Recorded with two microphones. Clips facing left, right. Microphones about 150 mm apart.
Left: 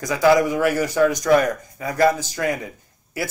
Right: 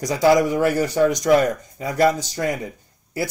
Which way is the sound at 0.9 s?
20° right (ahead or behind).